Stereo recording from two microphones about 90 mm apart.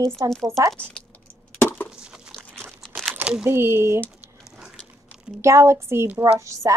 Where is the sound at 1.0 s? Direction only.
10° left (ahead or behind).